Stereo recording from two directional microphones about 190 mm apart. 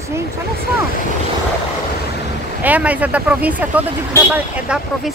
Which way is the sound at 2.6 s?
10° right (ahead or behind).